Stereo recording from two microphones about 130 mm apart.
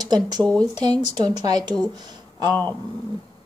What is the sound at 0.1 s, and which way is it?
Speech, 35° right (ahead or behind).